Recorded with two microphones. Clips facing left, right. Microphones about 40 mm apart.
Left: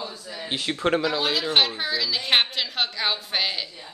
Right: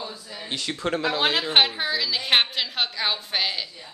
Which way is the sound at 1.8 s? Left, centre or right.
Centre.